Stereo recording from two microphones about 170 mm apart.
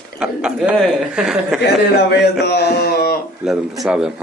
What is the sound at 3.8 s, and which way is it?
Speech, 5° right (ahead or behind).